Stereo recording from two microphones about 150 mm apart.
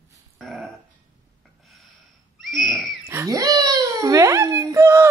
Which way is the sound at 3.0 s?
20° right (ahead or behind).